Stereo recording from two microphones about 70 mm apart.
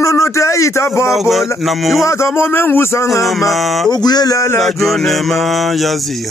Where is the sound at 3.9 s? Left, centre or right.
Left.